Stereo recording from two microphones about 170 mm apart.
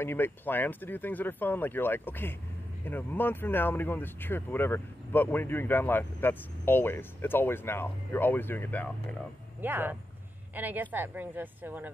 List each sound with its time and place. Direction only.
0.0 s speech: 15° left (ahead or behind)
9.6 s speech: 10° right (ahead or behind)